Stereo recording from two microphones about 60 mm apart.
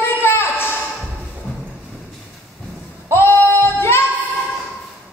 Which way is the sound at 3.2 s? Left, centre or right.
Left.